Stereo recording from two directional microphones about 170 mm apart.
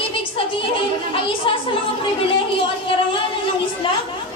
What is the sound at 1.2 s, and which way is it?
Speech, 30° left (ahead or behind).